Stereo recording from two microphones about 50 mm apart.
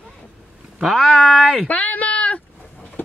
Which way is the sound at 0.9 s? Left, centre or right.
Centre.